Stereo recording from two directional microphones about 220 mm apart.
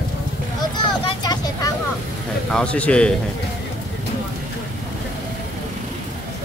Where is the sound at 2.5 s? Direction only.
5° left (ahead or behind).